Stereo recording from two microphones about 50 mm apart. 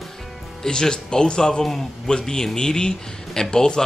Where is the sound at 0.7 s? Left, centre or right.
Centre.